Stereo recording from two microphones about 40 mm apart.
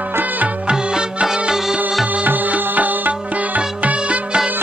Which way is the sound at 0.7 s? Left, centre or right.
Centre.